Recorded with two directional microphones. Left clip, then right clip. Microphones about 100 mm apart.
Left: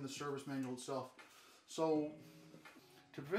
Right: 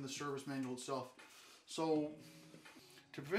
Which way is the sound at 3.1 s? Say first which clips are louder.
Right 1 dB; 10° right (ahead or behind).